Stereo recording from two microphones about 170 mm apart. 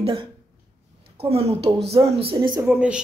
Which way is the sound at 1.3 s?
35° right (ahead or behind).